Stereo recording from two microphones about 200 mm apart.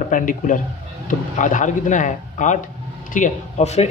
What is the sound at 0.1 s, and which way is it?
Speech, 40° left (ahead or behind).